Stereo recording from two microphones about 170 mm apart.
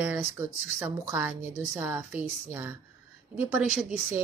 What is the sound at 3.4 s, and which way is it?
Speech, 10° right (ahead or behind).